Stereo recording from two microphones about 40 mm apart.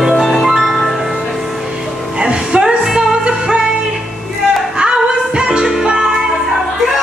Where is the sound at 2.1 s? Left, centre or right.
Centre.